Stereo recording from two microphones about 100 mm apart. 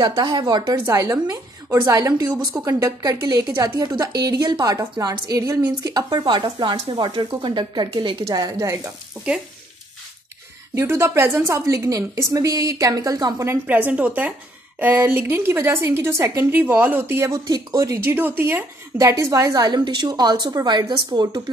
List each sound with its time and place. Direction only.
0.0 s speech: 55° right (ahead or behind)
0.8 s a woman's voice: 35° right (ahead or behind); by 8.3 s 55° right (ahead or behind)
8.3 s a woman's voice: 35° right (ahead or behind)
10.7 s a woman's voice: 25° right (ahead or behind)
13.7 s a woman's voice: 15° right (ahead or behind)
17.5 s a woman's voice: 35° right (ahead or behind)